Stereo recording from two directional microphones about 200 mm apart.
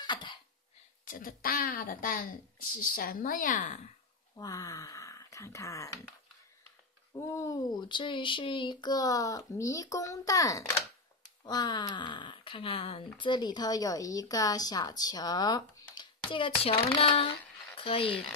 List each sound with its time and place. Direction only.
0.0 s cough: 25° left (ahead or behind)
1.0 s a woman's voice: 45° left (ahead or behind)
4.4 s speech: 15° left (ahead or behind)
7.2 s speech: 15° left (ahead or behind)